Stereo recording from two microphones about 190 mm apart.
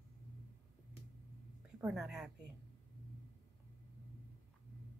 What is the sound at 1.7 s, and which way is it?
Speech, 5° right (ahead or behind).